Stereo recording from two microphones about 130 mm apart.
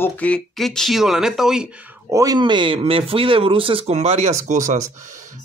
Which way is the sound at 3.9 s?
55° right (ahead or behind).